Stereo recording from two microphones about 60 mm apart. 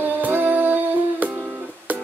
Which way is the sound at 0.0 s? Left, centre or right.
Right.